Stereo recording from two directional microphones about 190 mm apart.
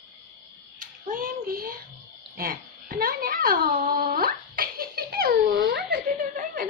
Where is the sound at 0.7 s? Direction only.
45° right (ahead or behind).